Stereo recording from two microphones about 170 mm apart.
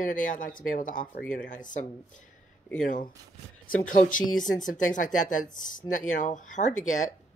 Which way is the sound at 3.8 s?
50° left (ahead or behind).